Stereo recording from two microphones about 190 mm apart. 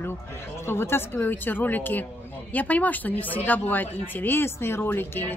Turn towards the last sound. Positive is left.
turn(degrees=10)  # may be behind; listen again after turning